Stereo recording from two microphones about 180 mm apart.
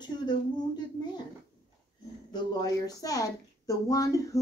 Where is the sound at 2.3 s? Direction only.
20° left (ahead or behind).